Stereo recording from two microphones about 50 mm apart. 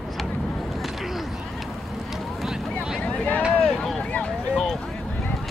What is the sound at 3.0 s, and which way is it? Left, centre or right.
Vehicle, left.